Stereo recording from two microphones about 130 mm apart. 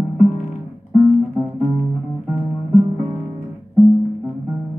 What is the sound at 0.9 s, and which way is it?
Music, 10° right (ahead or behind).